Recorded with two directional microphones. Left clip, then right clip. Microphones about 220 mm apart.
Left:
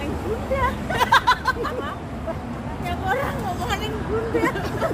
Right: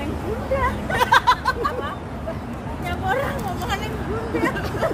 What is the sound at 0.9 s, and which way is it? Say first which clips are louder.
Hubbub: right 1 dB; 15° right (ahead or behind).